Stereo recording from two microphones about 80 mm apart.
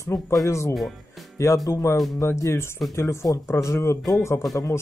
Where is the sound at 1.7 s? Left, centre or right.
Left.